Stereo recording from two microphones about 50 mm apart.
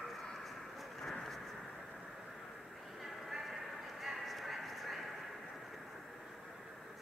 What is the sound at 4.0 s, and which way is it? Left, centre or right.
Clip-clop, centre.